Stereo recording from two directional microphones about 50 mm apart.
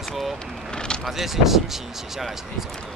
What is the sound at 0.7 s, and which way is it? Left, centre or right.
Speech, centre.